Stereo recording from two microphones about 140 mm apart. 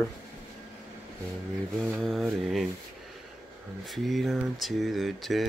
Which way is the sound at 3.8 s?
Centre (ahead or behind).